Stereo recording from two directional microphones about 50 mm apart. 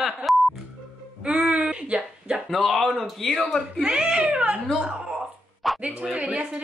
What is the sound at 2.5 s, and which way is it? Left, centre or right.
Speech, centre.